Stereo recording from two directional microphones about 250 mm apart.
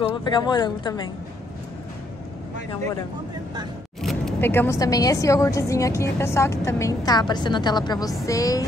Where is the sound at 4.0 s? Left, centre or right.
Centre.